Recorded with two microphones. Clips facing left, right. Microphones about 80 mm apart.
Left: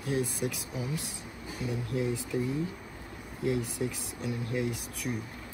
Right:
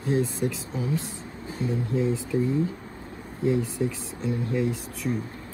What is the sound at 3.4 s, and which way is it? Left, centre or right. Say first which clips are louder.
Speech: right 6 dB; left.